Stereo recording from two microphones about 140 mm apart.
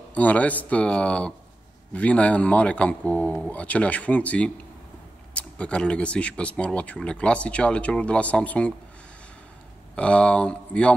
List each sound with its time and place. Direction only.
0.1 s speech: 10° left (ahead or behind)
9.9 s speech: 10° left (ahead or behind)